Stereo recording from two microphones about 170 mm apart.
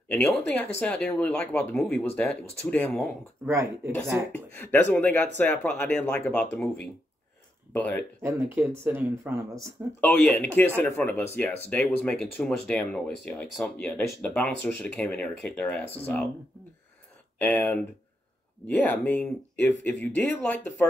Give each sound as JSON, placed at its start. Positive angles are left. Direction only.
{"t": 0.1, "sound": "speech", "side_deg": 5}
{"t": 3.4, "sound": "speech", "side_deg": -15}
{"t": 4.5, "sound": "speech", "side_deg": 10}
{"t": 7.7, "sound": "speech", "side_deg": 10}
{"t": 8.2, "sound": "speech", "side_deg": -15}
{"t": 9.9, "sound": "speech", "side_deg": 5}
{"t": 17.4, "sound": "speech", "side_deg": 10}